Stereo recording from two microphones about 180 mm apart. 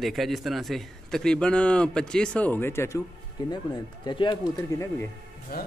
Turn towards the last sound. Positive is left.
turn(degrees=55)  # may be behind; listen again after turning